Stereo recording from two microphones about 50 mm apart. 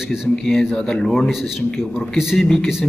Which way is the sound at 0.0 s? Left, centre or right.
Centre.